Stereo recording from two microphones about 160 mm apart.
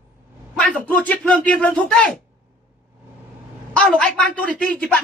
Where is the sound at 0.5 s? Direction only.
5° left (ahead or behind).